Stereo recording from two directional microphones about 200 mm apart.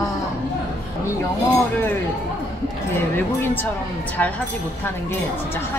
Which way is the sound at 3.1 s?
10° left (ahead or behind).